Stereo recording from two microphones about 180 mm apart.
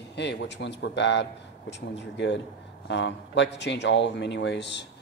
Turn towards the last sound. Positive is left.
turn(degrees=75)  # may be behind; listen again after turning